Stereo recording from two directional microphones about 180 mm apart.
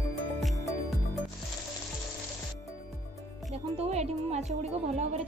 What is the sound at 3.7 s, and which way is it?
Music, 35° right (ahead or behind).